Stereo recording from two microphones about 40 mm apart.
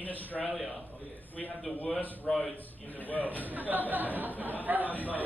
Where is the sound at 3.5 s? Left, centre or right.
Right.